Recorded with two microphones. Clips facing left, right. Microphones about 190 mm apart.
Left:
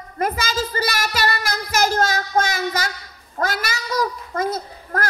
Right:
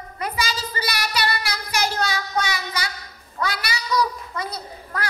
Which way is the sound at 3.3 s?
45° left (ahead or behind).